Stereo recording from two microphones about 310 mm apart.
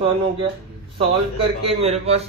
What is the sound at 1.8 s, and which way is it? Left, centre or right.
Speech, centre.